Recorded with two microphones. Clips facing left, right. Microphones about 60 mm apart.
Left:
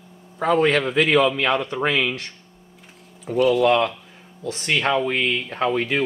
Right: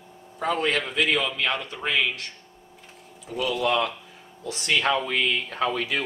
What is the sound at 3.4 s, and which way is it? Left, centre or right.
Speech, centre.